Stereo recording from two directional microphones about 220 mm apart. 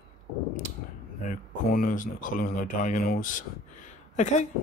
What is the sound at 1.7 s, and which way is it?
Speech, 40° left (ahead or behind).